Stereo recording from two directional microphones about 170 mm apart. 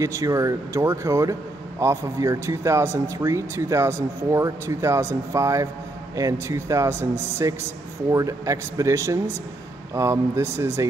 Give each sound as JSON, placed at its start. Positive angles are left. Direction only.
{"t": 0.0, "sound": "speech", "side_deg": -20}